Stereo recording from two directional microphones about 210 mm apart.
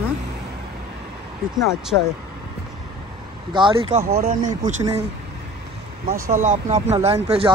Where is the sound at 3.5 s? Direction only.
25° right (ahead or behind).